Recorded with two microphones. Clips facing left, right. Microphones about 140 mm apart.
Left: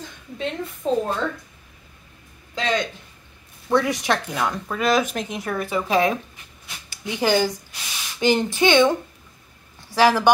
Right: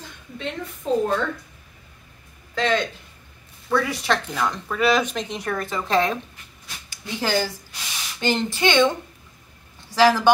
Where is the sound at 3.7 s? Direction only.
20° left (ahead or behind).